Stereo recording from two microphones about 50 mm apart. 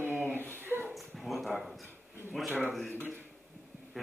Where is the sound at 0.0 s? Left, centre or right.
Right.